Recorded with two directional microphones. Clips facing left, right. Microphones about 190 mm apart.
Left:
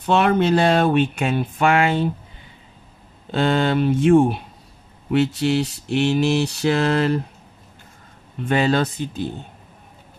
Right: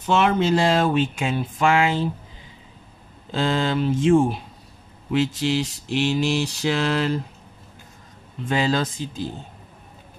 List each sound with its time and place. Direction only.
0.0 s speech: 60° left (ahead or behind)
3.3 s speech: 60° left (ahead or behind)
8.5 s speech: 60° left (ahead or behind)